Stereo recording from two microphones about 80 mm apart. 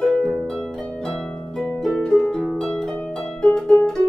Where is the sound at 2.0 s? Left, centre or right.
Centre.